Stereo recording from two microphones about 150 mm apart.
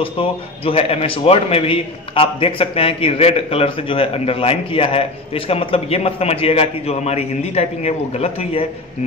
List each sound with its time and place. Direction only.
0.0 s a man's voice: 40° left (ahead or behind)